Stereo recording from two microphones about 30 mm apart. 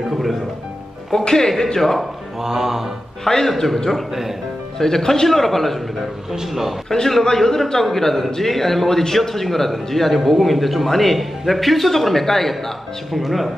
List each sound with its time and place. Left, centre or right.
0.0 s music: centre
1.1 s a man's voice: centre
2.4 s mantra: centre
3.3 s a man's voice: centre
4.1 s mantra: centre
4.7 s a man's voice: centre
13.2 s speech: centre